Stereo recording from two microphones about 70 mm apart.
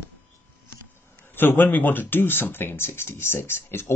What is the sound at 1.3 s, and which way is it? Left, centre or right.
Speech, left.